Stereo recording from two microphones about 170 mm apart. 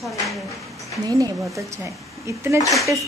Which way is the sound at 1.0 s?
20° right (ahead or behind).